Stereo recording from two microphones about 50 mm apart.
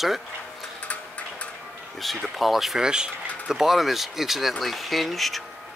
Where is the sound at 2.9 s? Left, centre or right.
Centre.